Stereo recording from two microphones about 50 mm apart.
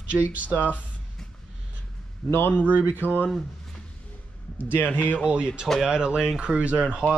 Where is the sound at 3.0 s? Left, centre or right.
Right.